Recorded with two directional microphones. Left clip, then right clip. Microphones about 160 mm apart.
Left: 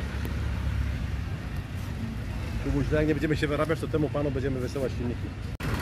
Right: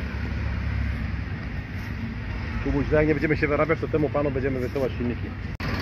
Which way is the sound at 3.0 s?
15° right (ahead or behind).